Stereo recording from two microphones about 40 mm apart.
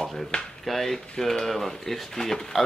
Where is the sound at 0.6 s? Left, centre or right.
Centre.